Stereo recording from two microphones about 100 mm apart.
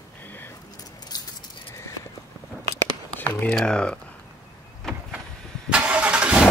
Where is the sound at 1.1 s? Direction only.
40° left (ahead or behind).